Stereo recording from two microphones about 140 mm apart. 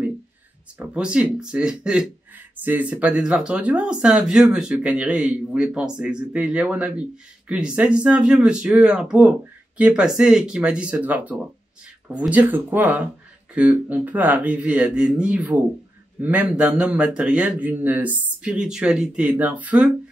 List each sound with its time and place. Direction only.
0.7 s speech: 10° right (ahead or behind)